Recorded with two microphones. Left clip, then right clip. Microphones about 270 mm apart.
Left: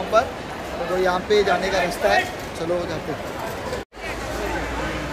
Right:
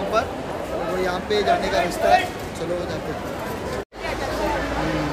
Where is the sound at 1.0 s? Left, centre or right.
Centre.